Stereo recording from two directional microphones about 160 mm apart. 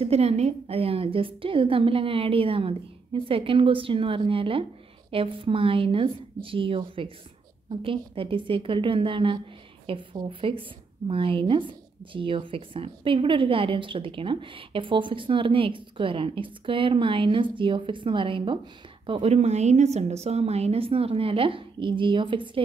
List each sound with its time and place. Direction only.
0.0 s speech: 40° right (ahead or behind)